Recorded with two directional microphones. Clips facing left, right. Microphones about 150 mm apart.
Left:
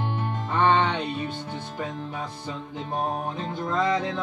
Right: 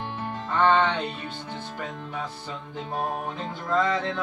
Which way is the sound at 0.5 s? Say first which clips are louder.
Even; 15° left (ahead or behind).